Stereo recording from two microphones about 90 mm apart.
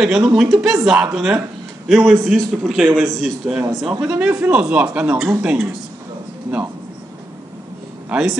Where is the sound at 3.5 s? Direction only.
10° right (ahead or behind).